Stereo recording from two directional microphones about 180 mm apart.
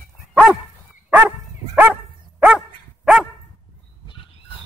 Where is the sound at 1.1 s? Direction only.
10° right (ahead or behind).